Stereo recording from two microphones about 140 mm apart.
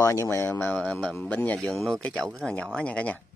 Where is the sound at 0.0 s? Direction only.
20° left (ahead or behind).